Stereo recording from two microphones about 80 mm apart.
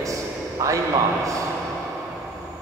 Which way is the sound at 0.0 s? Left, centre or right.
Right.